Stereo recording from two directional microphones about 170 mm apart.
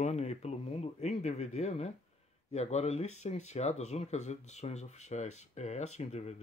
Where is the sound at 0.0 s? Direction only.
40° left (ahead or behind).